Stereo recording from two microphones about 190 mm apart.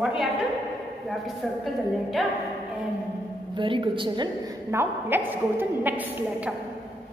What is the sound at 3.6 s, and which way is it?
Speech, 25° right (ahead or behind).